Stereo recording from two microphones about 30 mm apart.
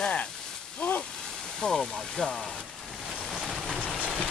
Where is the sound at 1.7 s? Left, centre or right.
Centre.